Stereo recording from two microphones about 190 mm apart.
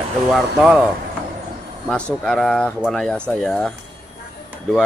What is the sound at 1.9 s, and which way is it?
Speech, centre (ahead or behind).